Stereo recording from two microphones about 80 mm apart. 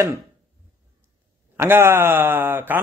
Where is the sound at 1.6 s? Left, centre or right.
Right.